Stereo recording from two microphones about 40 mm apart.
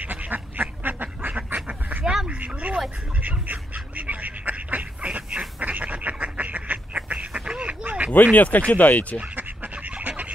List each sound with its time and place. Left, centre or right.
0.0 s duck: right
2.2 s a sound: right
3.2 s duck: right
7.6 s quack: right
8.1 s speech: left
9.2 s duck: right